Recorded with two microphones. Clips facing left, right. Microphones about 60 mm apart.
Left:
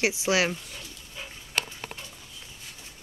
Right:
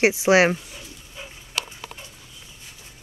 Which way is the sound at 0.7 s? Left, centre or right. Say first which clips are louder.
Right 1 dB; centre.